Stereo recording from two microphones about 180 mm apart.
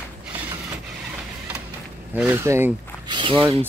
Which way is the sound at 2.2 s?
10° right (ahead or behind).